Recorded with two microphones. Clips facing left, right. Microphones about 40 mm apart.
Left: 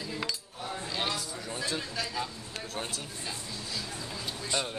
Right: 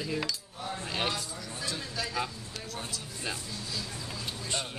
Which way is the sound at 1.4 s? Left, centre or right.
Left.